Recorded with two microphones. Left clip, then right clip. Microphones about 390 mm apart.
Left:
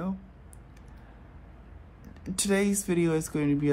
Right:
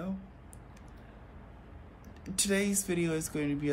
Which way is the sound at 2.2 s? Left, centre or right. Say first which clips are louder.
Left 4 dB; centre.